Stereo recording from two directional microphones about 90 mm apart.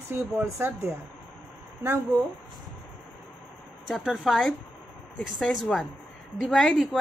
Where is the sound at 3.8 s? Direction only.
5° right (ahead or behind).